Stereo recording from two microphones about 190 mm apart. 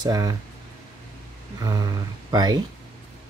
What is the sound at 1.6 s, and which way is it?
Speech, 20° right (ahead or behind).